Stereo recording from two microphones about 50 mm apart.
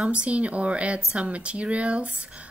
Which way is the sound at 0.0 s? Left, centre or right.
Right.